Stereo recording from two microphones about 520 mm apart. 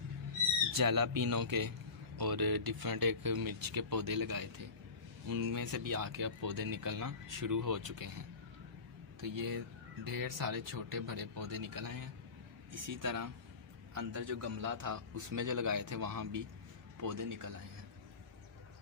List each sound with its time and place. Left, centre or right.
0.7 s speech: right
9.2 s speech: right